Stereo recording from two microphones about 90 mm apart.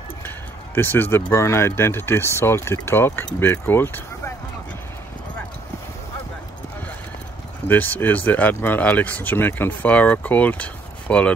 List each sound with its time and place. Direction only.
0.7 s speech: 20° left (ahead or behind)
7.6 s speech: 20° left (ahead or behind)